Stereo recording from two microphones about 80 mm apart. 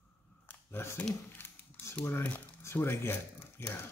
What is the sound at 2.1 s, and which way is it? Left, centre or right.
Speech, left.